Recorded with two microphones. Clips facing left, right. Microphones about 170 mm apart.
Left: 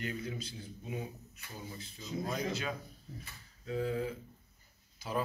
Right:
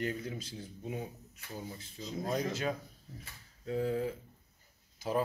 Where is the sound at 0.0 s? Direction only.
45° right (ahead or behind).